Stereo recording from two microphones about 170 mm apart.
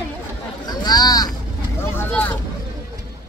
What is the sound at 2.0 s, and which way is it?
Speech, 10° left (ahead or behind).